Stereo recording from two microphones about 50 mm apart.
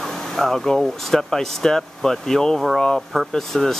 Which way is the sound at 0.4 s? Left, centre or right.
Centre.